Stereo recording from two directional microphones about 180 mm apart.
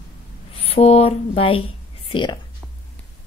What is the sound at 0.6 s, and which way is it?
Speech, 35° left (ahead or behind).